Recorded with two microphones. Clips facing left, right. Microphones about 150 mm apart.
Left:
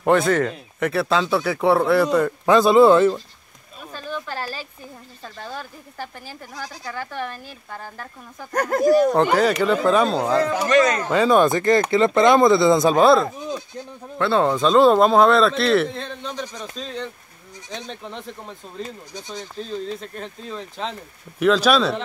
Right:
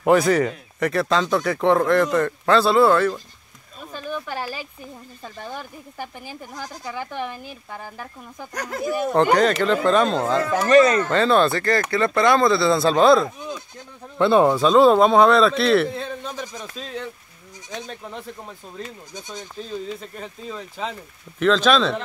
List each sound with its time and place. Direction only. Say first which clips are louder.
0.0 s speech: right 1 dB; centre (ahead or behind); by 3.2 s 20° left (ahead or behind)
3.9 s a sound: right 1 dB; 15° right (ahead or behind)
5.2 s speech: even; 15° right (ahead or behind)
8.5 s speech: left 9 dB; 50° left (ahead or behind)
9.0 s speech: even; centre (ahead or behind)
10.7 s speech: right 4 dB; 35° right (ahead or behind)
11.1 s speech: left 2 dB; 10° left (ahead or behind)
12.9 s speech: even; 5° left (ahead or behind)
14.1 s speech: right 3 dB; 15° right (ahead or behind)
20.0 s speech: left 1 dB; 5° right (ahead or behind)
21.4 s speech: left 1 dB; 5° left (ahead or behind)